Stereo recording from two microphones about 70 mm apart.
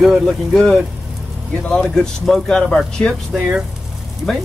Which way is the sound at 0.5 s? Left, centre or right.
Centre.